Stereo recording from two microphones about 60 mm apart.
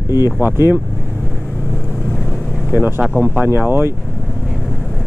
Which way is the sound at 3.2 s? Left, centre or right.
Right.